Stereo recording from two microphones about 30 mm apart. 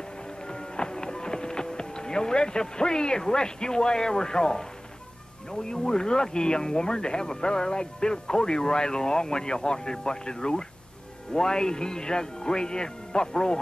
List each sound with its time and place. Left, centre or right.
0.5 s music: left
5.5 s speech: left